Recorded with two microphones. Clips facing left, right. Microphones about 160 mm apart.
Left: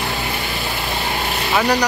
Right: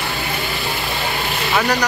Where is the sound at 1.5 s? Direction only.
10° left (ahead or behind).